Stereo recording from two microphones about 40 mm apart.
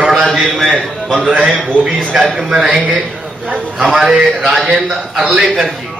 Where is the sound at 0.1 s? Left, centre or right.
Centre.